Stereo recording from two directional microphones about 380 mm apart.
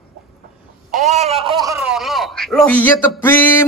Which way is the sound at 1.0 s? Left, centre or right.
Centre.